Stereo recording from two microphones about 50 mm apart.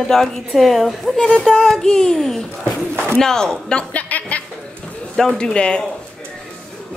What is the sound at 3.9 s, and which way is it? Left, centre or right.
Chuckle, left.